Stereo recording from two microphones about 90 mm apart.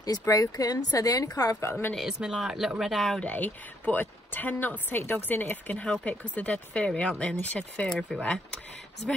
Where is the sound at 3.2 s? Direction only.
20° left (ahead or behind).